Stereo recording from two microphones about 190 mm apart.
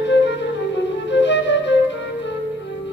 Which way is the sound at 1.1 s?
70° left (ahead or behind).